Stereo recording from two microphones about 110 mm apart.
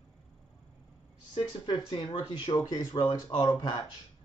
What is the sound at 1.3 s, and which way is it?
Speech, 45° left (ahead or behind).